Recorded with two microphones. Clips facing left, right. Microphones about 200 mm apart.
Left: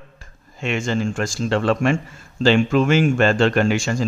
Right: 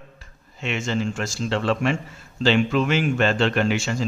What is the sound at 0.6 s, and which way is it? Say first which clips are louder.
Speech: left 3 dB; 50° left (ahead or behind).